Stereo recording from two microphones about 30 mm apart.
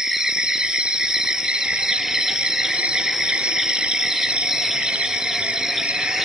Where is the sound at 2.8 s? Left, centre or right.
Right.